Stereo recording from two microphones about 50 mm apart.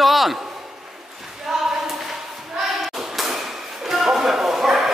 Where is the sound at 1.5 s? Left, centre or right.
Centre.